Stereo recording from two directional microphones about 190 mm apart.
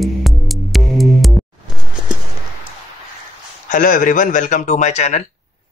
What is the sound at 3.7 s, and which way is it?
Speech, 45° left (ahead or behind).